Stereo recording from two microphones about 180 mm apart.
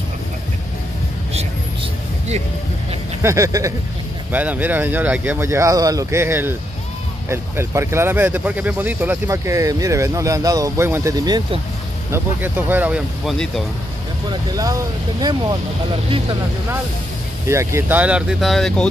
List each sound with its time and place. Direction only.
3.2 s speech: 15° right (ahead or behind)
12.1 s speech: 10° right (ahead or behind)
14.3 s speech: 20° right (ahead or behind)
17.5 s speech: 15° right (ahead or behind); by 18.9 s centre (ahead or behind)